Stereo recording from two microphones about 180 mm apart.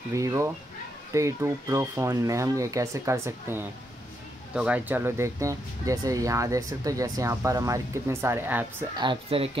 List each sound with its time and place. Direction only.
0.1 s speech: 15° right (ahead or behind)
8.9 s speech: 25° right (ahead or behind)